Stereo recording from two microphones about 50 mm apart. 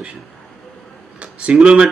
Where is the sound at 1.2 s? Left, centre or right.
Right.